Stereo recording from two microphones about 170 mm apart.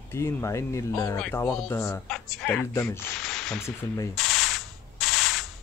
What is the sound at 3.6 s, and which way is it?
Speech, 15° left (ahead or behind).